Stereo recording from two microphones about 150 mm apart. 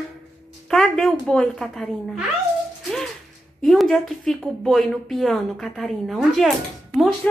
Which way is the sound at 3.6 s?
Centre (ahead or behind).